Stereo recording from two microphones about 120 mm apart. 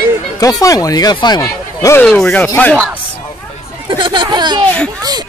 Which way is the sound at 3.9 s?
40° right (ahead or behind).